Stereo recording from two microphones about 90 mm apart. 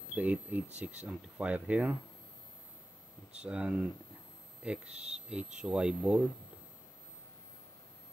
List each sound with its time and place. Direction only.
0.1 s speech: 15° right (ahead or behind)
3.4 s speech: 10° right (ahead or behind)